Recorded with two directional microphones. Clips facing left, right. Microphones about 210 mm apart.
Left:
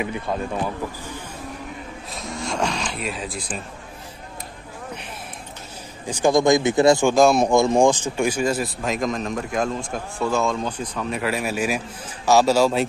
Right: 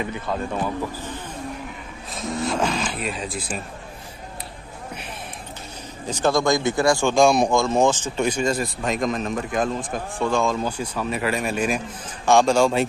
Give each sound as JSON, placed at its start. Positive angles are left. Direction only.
{"t": 0.0, "sound": "speech", "side_deg": 15}
{"t": 2.1, "sound": "speech", "side_deg": 0}
{"t": 6.0, "sound": "speech", "side_deg": 10}
{"t": 7.1, "sound": "speech", "side_deg": 0}
{"t": 7.5, "sound": "speech", "side_deg": 15}